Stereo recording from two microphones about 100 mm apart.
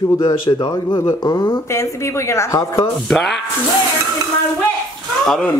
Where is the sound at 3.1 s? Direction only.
5° left (ahead or behind).